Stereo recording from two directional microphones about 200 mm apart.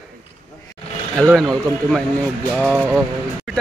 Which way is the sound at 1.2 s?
5° left (ahead or behind).